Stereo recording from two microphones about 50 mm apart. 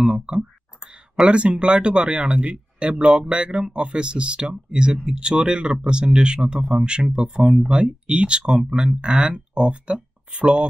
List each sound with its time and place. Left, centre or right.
0.0 s speech: centre